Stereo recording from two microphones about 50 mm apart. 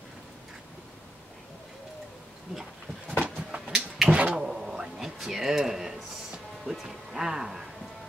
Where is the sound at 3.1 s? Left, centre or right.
Right.